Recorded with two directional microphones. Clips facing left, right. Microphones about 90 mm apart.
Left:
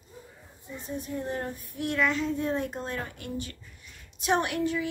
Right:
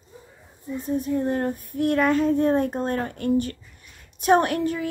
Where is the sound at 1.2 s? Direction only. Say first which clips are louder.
Right 9 dB; 50° right (ahead or behind).